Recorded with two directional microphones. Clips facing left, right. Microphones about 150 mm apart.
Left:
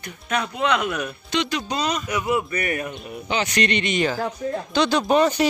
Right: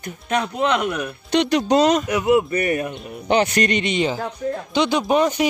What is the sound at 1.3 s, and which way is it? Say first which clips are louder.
Speech: right 9 dB; 65° right (ahead or behind).